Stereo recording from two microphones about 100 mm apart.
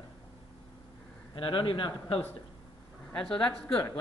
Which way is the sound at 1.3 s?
60° left (ahead or behind).